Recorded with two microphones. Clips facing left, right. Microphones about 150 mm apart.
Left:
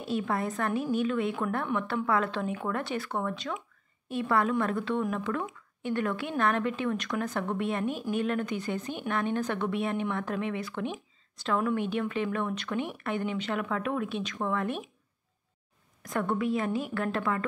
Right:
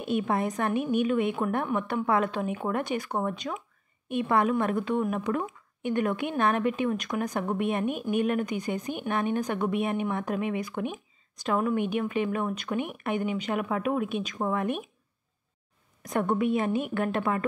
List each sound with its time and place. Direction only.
0.0 s a woman's voice: 20° right (ahead or behind)
16.1 s a woman's voice: 20° right (ahead or behind)